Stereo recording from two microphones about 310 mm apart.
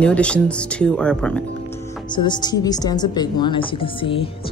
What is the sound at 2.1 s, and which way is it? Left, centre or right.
Speech, centre.